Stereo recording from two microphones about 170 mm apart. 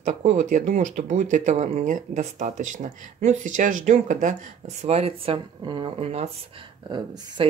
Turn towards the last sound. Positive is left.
turn(degrees=-25)  # may be behind; listen again after turning